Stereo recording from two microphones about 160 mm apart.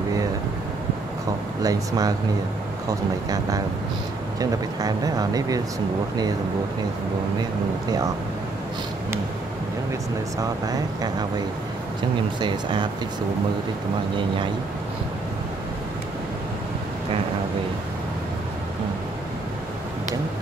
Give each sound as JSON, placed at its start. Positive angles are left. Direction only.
{"t": 1.6, "sound": "speech", "side_deg": -20}
{"t": 10.4, "sound": "speech", "side_deg": -25}
{"t": 12.4, "sound": "speech", "side_deg": -30}